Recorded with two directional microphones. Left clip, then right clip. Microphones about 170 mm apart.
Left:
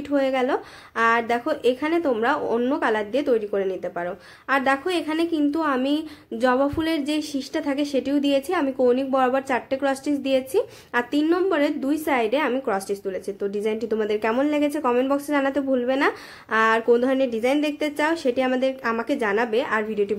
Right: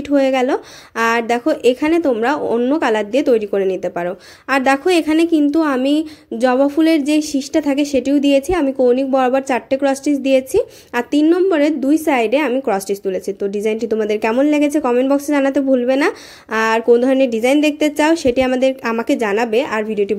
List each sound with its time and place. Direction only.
0.1 s a woman's voice: 40° right (ahead or behind)